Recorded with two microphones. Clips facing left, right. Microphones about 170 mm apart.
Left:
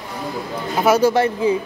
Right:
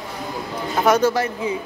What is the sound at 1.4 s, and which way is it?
Speech, 35° left (ahead or behind).